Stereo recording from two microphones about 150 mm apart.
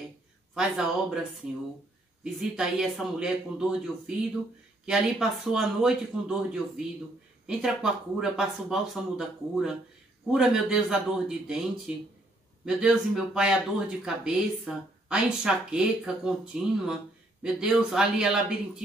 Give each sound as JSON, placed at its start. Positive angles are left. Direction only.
{"t": 0.6, "sound": "speech", "side_deg": -5}
{"t": 2.5, "sound": "speech", "side_deg": -5}